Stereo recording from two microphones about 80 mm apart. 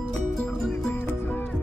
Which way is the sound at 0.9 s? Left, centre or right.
Left.